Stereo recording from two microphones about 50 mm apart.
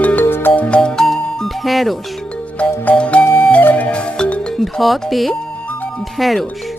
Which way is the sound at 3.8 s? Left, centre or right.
Left.